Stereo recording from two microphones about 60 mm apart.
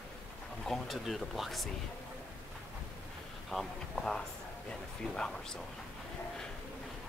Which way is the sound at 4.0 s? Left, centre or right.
Centre.